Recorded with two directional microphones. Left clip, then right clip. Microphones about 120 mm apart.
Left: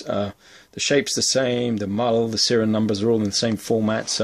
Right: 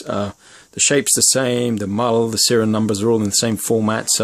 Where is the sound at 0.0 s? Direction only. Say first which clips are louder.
Right 2 dB; 30° right (ahead or behind).